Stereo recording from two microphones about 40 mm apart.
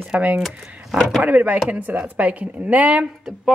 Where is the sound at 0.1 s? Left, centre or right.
Right.